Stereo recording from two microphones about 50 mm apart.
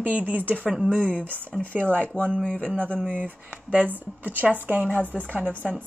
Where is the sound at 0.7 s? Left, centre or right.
Centre.